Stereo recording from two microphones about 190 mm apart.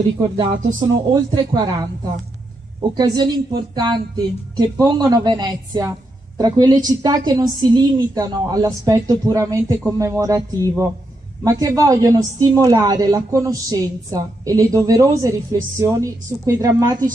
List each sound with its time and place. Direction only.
0.4 s speech: 25° right (ahead or behind)
2.9 s a woman's voice: 20° right (ahead or behind)